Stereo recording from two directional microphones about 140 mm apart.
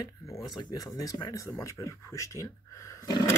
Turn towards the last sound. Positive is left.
turn(degrees=20)  # may be behind; listen again after turning